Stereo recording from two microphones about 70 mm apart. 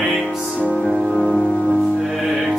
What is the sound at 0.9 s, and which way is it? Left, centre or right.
Music, centre.